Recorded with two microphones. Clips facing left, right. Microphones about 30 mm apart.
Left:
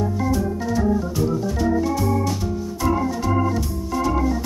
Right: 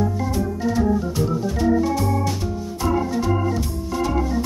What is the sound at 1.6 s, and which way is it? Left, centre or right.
Organ, centre.